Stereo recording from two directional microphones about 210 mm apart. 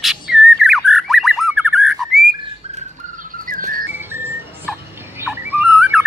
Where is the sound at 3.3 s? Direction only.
40° right (ahead or behind).